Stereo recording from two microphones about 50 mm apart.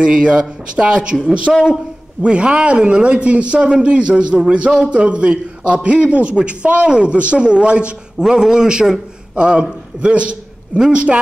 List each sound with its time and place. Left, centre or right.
0.0 s a man's voice: centre